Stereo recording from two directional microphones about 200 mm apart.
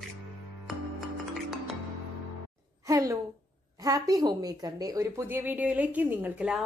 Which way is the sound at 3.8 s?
15° right (ahead or behind).